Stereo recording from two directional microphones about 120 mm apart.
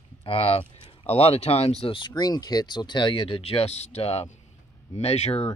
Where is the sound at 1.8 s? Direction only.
45° left (ahead or behind).